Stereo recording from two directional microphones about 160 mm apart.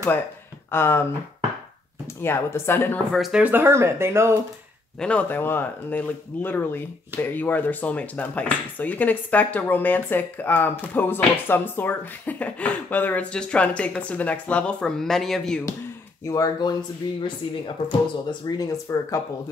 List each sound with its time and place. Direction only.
0.7 s speech: 15° left (ahead or behind)
2.2 s speech: 15° left (ahead or behind)
3.1 s speech: centre (ahead or behind)
5.0 s speech: 10° left (ahead or behind)
16.3 s speech: 25° left (ahead or behind)
18.6 s speech: 20° left (ahead or behind)